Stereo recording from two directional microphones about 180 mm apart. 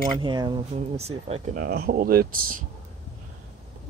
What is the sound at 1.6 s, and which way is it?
Speech, 60° right (ahead or behind).